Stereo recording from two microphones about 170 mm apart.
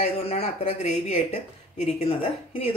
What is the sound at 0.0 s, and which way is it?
A woman's voice, 35° left (ahead or behind).